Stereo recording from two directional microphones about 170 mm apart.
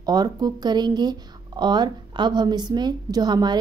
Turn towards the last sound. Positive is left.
turn(degrees=-25)  # may be behind; listen again after turning